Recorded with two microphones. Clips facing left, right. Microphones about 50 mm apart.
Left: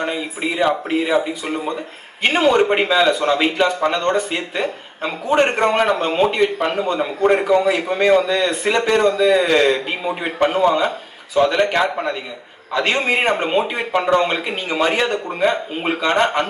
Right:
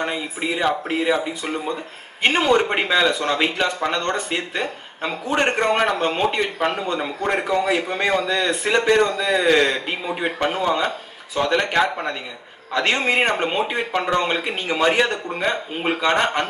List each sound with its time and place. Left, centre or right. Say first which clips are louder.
0.0 s a man's voice: left 2 dB; centre
7.7 s a man's voice: left 5 dB; centre